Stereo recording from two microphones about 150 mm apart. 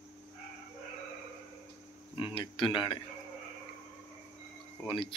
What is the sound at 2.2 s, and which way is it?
Speech, 35° left (ahead or behind).